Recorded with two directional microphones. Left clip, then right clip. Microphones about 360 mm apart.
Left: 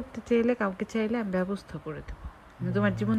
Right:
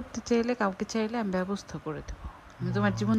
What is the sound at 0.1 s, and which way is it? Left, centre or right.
Speech, centre.